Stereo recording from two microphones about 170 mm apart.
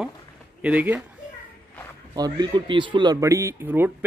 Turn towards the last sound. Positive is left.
turn(degrees=-15)  # may be behind; listen again after turning